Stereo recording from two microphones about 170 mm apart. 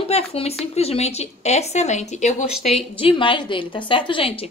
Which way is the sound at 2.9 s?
30° left (ahead or behind).